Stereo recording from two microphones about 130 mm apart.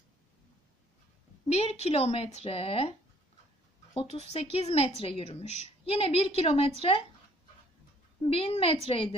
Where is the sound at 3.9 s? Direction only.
50° left (ahead or behind).